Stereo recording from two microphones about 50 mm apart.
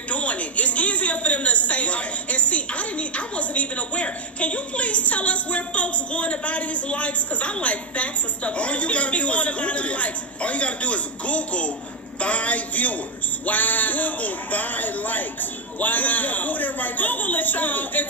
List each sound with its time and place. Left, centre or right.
0.1 s a woman's voice: left